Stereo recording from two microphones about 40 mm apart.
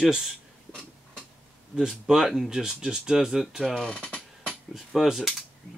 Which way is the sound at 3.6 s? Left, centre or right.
Centre.